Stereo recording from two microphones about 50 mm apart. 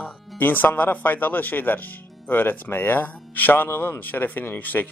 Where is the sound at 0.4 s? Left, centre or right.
Left.